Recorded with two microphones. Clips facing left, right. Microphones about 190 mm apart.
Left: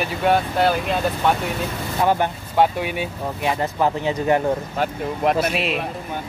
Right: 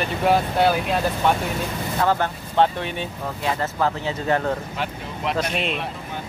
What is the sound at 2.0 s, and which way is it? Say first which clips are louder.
Speech: left 2 dB; 15° left (ahead or behind).